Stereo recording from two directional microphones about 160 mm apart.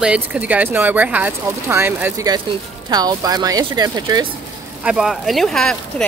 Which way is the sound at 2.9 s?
25° right (ahead or behind).